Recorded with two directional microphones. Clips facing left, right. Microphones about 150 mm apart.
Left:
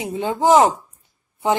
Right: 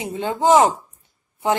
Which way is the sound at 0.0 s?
15° left (ahead or behind).